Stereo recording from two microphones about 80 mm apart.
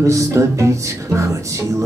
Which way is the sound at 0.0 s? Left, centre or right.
Right.